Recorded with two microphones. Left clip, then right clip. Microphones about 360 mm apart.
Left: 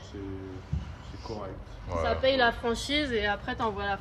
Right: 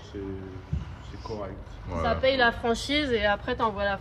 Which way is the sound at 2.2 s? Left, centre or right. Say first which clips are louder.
Right 2 dB; right.